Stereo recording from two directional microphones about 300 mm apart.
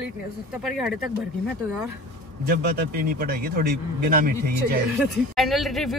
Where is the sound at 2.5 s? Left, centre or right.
Right.